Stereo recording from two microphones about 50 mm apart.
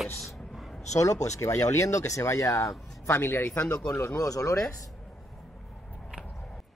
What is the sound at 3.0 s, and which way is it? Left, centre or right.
Speech, left.